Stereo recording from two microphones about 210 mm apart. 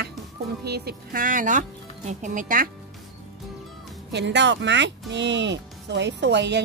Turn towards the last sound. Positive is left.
turn(degrees=-55)  # may be behind; listen again after turning